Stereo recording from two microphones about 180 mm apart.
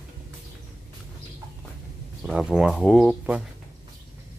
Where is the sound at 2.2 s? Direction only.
Centre (ahead or behind).